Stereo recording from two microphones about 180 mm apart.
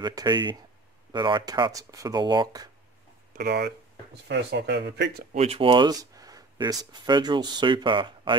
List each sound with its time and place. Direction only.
0.0 s speech: 20° right (ahead or behind)
3.3 s speech: 65° right (ahead or behind)
5.3 s speech: 35° right (ahead or behind)